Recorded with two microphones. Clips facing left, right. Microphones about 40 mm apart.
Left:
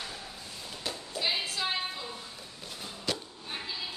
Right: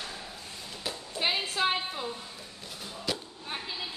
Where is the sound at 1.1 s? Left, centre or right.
Right.